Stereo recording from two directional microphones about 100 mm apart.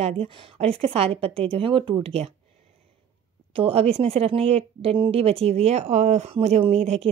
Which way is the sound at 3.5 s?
75° right (ahead or behind).